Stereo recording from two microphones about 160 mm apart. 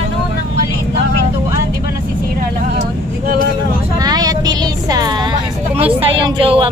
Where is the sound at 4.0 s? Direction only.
25° right (ahead or behind).